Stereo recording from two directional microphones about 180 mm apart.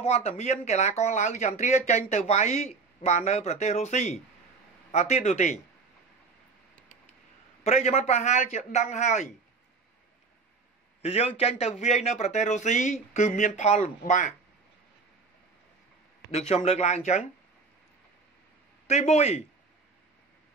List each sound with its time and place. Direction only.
0.0 s speech: 35° left (ahead or behind)
7.6 s speech: 35° left (ahead or behind)
11.0 s speech: 35° left (ahead or behind)
16.3 s speech: 35° left (ahead or behind)
18.9 s speech: 35° left (ahead or behind)